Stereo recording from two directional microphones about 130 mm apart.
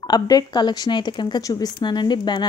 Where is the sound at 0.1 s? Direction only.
30° left (ahead or behind).